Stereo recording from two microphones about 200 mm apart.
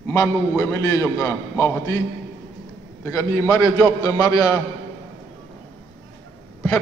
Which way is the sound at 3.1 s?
15° left (ahead or behind).